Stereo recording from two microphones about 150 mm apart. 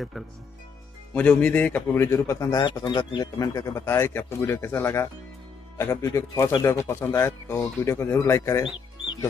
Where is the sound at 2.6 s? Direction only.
30° left (ahead or behind).